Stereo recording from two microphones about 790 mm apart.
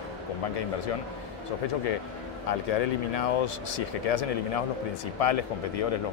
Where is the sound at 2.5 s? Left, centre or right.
Left.